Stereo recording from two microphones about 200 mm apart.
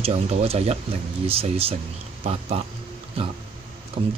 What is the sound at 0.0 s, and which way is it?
Speech, 30° right (ahead or behind).